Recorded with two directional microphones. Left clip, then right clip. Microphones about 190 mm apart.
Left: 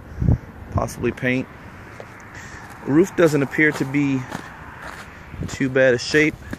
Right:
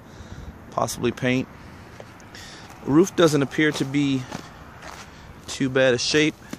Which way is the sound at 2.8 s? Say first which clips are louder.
Left 1 dB; 15° right (ahead or behind).